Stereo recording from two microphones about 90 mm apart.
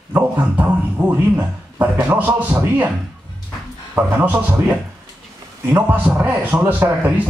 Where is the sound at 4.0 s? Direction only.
20° right (ahead or behind).